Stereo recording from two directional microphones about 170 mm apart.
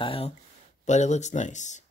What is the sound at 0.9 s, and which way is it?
Speech, 45° left (ahead or behind).